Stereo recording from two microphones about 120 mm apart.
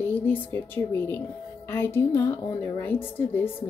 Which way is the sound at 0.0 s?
15° left (ahead or behind).